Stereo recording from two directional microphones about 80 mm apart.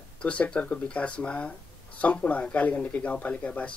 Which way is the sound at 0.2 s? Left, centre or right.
Centre.